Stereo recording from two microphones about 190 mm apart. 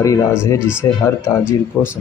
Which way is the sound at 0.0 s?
15° left (ahead or behind).